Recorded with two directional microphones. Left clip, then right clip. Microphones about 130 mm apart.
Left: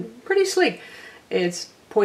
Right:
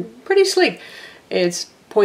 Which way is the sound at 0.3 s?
25° right (ahead or behind).